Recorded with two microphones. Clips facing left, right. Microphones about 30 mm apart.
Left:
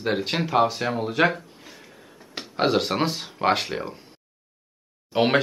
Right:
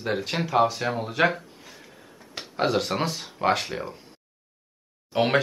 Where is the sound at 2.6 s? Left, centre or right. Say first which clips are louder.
Left 2 dB; centre.